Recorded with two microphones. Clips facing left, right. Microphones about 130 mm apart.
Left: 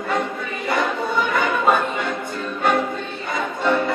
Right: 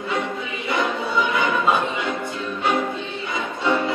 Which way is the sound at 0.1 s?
50° left (ahead or behind).